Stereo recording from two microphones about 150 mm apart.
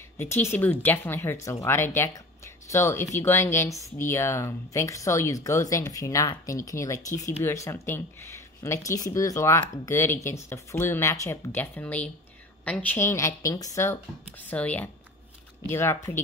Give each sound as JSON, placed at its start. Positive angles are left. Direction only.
{"t": 0.2, "sound": "speech", "side_deg": 15}